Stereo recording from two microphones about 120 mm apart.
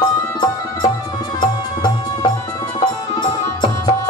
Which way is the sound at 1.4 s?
35° left (ahead or behind).